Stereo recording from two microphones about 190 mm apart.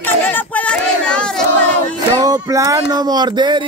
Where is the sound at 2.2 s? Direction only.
20° right (ahead or behind).